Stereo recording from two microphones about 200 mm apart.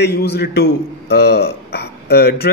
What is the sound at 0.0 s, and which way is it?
A man's voice, 55° left (ahead or behind).